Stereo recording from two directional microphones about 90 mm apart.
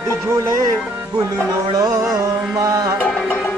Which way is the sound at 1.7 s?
40° right (ahead or behind).